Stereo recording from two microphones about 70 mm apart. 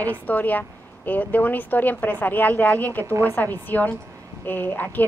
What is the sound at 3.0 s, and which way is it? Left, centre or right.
Speech, right.